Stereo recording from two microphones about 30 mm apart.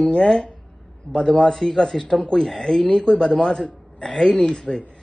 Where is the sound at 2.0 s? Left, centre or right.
Left.